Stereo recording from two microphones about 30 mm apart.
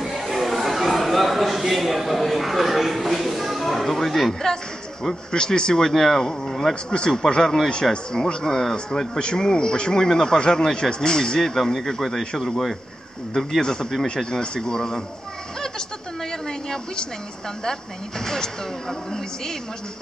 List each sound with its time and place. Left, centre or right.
0.0 s chatter: centre
5.3 s speech: left; by 6.7 s centre
6.7 s a man's voice: left; by 9.2 s centre
9.2 s a man's voice: left
11.6 s speech: centre
12.2 s a man's voice: left
12.4 s a man's voice: centre
13.6 s a man's voice: left
16.3 s a sound: centre
18.2 s speech: centre